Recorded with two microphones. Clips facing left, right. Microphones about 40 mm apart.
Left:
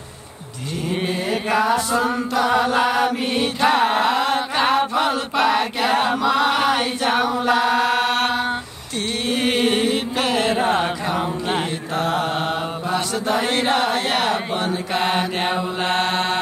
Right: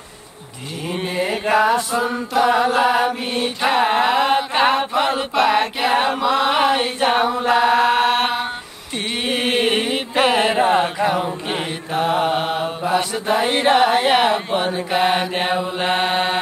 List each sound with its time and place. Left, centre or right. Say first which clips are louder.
0.9 s mantra: right 1 dB; centre
1.2 s chant: right 4 dB; centre
11.9 s mantra: right 4 dB; centre